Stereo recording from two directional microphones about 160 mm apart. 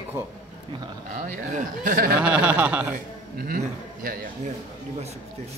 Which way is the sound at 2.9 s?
65° right (ahead or behind).